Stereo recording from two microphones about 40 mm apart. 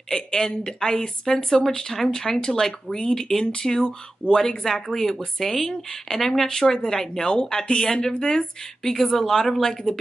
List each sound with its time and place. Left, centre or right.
0.1 s a woman's voice: centre
8.8 s speech: centre